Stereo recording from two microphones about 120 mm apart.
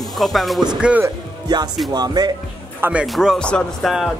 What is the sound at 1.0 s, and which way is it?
Speech, 35° right (ahead or behind).